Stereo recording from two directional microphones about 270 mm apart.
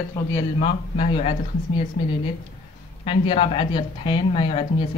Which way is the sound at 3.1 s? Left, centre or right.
Left.